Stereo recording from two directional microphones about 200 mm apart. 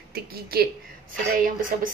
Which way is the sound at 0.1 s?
50° right (ahead or behind).